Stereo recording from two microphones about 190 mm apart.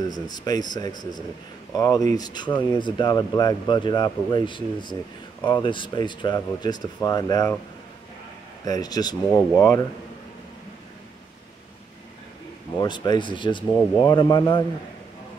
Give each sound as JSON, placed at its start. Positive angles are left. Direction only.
{"t": 0.1, "sound": "speech", "side_deg": 20}
{"t": 8.6, "sound": "speech", "side_deg": 20}
{"t": 12.8, "sound": "speech", "side_deg": 25}